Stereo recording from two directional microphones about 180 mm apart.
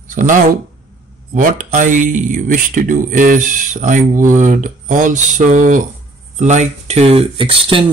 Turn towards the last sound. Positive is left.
turn(degrees=-30)  # may be behind; listen again after turning